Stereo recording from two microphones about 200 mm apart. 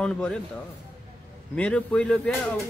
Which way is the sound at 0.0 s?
5° left (ahead or behind).